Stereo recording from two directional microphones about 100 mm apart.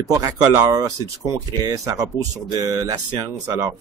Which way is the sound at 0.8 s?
35° right (ahead or behind).